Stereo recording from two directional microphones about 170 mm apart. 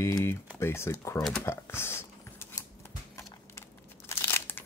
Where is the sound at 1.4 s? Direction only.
15° left (ahead or behind).